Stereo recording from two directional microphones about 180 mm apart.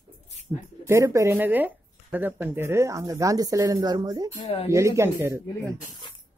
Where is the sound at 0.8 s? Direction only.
15° right (ahead or behind).